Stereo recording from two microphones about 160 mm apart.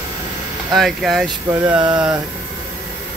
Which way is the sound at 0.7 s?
Centre (ahead or behind).